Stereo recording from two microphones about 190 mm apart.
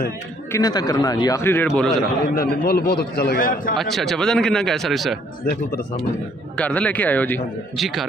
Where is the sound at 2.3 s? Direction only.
55° left (ahead or behind).